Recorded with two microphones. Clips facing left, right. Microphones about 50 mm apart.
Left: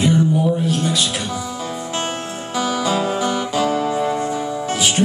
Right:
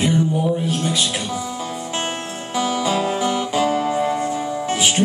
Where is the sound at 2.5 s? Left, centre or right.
Centre.